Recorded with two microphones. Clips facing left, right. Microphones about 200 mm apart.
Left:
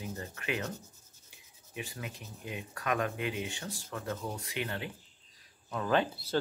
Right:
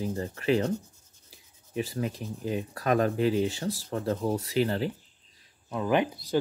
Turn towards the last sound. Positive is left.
turn(degrees=-15)  # may be behind; listen again after turning